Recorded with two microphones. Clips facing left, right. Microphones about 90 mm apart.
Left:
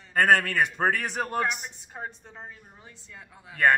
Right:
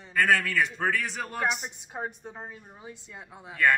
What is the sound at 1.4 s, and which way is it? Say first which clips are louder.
A woman's voice: right 1 dB; 15° right (ahead or behind).